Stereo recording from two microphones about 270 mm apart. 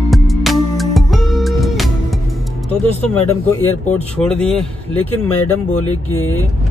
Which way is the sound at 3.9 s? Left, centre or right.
Centre.